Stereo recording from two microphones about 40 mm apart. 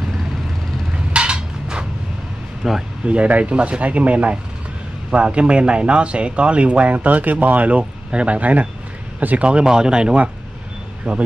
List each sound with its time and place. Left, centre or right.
0.9 s a sound: right
2.6 s speech: centre
3.1 s speech: right